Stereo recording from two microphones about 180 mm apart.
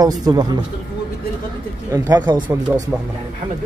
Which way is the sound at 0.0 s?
20° right (ahead or behind).